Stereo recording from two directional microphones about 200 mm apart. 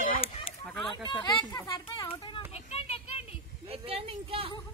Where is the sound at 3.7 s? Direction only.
30° right (ahead or behind).